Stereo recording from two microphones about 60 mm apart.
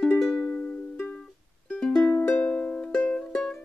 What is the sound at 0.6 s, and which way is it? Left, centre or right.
Music, left.